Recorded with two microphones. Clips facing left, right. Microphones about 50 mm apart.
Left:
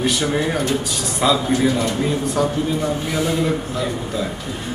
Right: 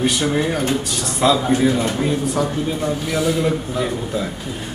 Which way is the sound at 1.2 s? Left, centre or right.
Centre.